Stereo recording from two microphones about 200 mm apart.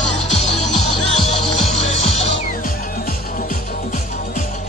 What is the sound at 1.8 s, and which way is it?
Music, 90° right.